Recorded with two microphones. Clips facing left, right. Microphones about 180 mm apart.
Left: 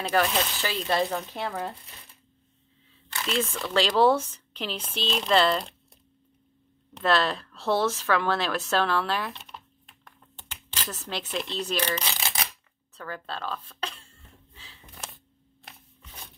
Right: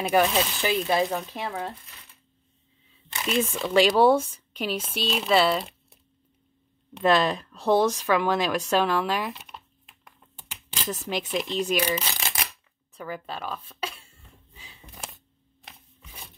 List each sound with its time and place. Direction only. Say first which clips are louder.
0.0 s speech: right 3 dB; 15° right (ahead or behind)
3.1 s crumpling: right 3 dB; 15° right (ahead or behind)
3.6 s speech: right 3 dB; 15° right (ahead or behind)
7.0 s speech: right 3 dB; 15° right (ahead or behind)
10.0 s a sound: right 1 dB; 10° right (ahead or behind)
15.0 s camera: right 1 dB; centre (ahead or behind)
16.0 s a sound: right 1 dB; 10° right (ahead or behind)